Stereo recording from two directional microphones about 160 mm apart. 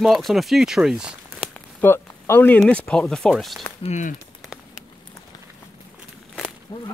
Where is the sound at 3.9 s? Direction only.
50° left (ahead or behind).